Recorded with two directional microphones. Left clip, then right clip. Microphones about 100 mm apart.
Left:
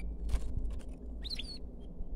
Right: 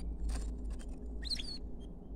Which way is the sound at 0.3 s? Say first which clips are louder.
Even; 20° left (ahead or behind).